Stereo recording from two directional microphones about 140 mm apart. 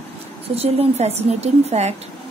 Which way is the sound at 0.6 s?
45° right (ahead or behind).